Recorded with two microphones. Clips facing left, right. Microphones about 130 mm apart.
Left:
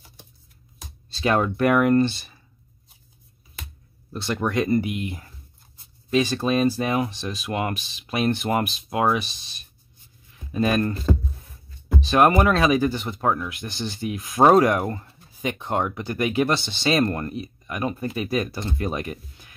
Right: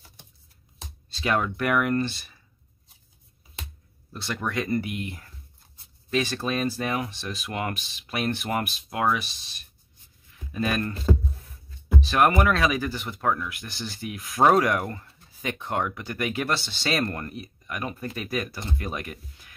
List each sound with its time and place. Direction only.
1.2 s speech: 30° left (ahead or behind)
4.1 s speech: 25° left (ahead or behind)
10.5 s speech: 30° left (ahead or behind)
12.0 s speech: 25° left (ahead or behind)